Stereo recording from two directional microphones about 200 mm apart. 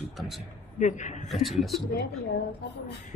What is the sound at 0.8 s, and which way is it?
Speech, 40° left (ahead or behind).